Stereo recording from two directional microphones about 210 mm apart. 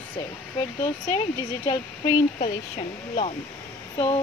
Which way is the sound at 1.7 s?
20° left (ahead or behind).